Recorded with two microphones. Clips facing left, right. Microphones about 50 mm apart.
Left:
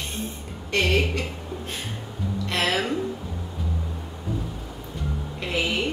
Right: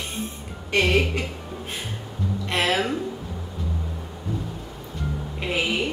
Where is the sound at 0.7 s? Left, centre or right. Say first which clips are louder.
Right 2 dB; right.